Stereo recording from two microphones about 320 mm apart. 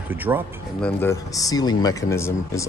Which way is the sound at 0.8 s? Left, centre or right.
Centre.